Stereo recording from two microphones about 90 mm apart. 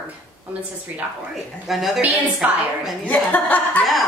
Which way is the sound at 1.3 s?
Centre (ahead or behind).